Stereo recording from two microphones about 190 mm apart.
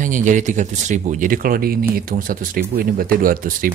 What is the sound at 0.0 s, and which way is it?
Speech, 40° right (ahead or behind).